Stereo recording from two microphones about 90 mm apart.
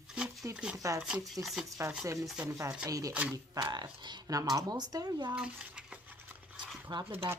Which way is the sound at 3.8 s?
55° right (ahead or behind).